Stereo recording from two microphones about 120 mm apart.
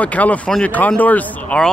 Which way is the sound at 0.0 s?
10° left (ahead or behind).